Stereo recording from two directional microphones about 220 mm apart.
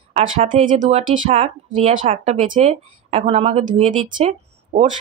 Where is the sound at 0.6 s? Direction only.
35° right (ahead or behind).